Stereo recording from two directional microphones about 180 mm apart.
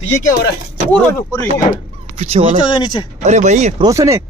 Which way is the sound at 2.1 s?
35° right (ahead or behind).